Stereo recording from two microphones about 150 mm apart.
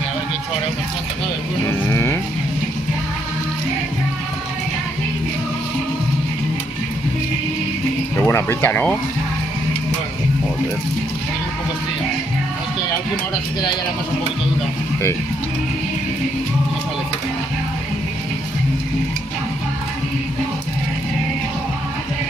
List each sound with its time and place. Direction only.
1.7 s speech: 15° left (ahead or behind)
8.2 s speech: 15° left (ahead or behind)